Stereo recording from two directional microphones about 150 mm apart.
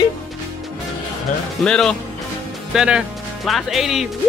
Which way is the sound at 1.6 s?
5° left (ahead or behind).